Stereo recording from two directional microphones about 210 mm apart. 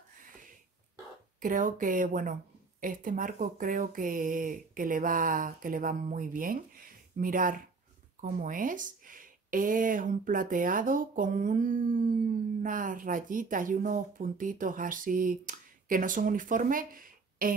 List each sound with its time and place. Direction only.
1.4 s speech: 40° right (ahead or behind)